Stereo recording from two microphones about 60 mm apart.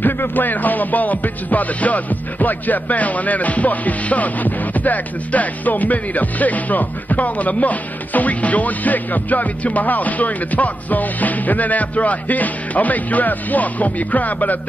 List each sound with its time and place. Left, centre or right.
0.0 s music: left